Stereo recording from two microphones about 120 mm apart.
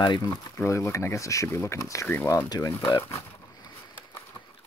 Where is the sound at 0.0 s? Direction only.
35° left (ahead or behind).